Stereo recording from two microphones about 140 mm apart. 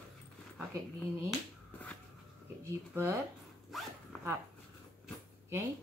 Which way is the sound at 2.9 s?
20° right (ahead or behind).